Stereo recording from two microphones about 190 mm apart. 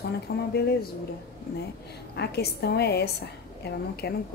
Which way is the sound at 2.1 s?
60° left (ahead or behind).